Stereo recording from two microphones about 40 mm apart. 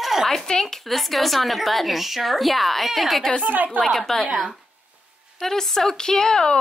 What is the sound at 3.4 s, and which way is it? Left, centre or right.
Speech, right.